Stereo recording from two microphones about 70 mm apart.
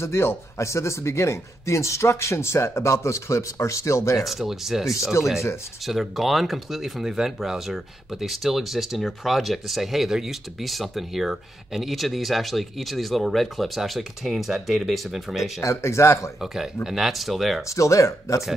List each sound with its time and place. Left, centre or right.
0.0 s speech: left
4.3 s speech: centre
5.2 s speech: left
5.9 s speech: centre
15.6 s speech: left
16.3 s speech: centre
17.6 s speech: left